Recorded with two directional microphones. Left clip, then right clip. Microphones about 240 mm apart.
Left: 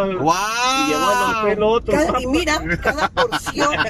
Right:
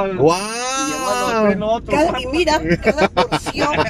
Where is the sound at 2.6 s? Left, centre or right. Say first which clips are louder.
Right 3 dB; right.